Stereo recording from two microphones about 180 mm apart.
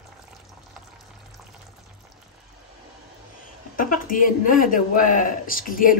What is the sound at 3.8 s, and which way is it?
A man's voice, 50° left (ahead or behind).